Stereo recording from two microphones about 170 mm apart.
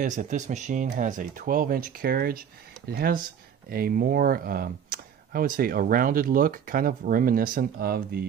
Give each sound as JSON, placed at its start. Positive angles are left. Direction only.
{"t": 0.0, "sound": "speech", "side_deg": -50}